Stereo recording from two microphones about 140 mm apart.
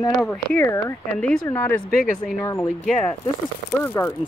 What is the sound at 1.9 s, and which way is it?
Speech, 90° left.